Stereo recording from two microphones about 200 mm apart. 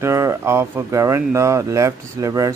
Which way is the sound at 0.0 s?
15° right (ahead or behind).